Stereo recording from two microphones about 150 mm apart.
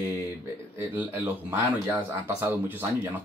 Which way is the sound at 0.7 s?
15° right (ahead or behind).